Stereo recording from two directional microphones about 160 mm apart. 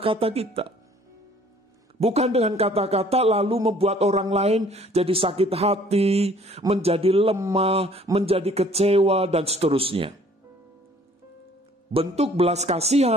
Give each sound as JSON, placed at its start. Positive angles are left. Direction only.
{"t": 0.0, "sound": "a man's voice", "side_deg": -35}
{"t": 2.0, "sound": "a man's voice", "side_deg": -40}
{"t": 11.9, "sound": "a man's voice", "side_deg": -35}